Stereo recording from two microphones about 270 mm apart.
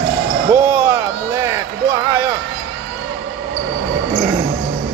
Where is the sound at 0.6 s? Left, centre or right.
Centre.